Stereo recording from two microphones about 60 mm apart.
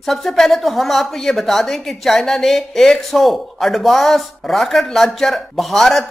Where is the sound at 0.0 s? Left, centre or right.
Centre.